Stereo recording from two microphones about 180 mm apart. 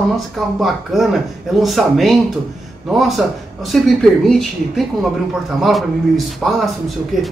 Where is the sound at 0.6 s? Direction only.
Centre (ahead or behind).